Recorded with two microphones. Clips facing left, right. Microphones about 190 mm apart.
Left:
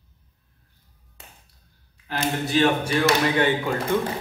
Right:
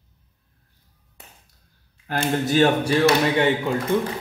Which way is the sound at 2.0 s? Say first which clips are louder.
Right 3 dB; 45° right (ahead or behind).